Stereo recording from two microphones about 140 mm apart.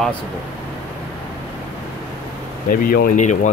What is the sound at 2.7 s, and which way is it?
Speech, 90° left.